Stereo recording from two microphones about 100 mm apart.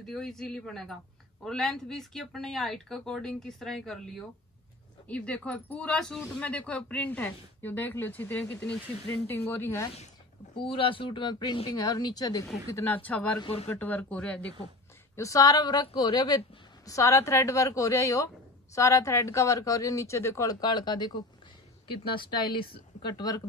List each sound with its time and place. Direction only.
0.0 s speech: 5° left (ahead or behind); by 9.8 s 25° left (ahead or behind)
10.6 s speech: 60° left (ahead or behind); by 12.4 s 40° left (ahead or behind)
12.7 s speech: 20° left (ahead or behind)
15.1 s speech: 35° left (ahead or behind)
16.8 s speech: 30° left (ahead or behind)
20.6 s speech: 45° left (ahead or behind)
22.0 s speech: 55° left (ahead or behind)